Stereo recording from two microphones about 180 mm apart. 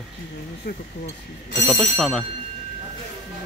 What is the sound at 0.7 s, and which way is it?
Speech, 65° left (ahead or behind).